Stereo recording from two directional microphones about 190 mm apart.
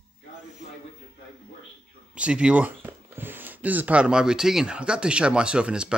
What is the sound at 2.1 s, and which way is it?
Speech, 5° right (ahead or behind).